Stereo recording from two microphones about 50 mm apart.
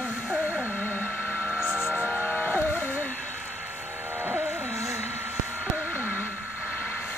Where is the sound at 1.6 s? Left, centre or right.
Centre.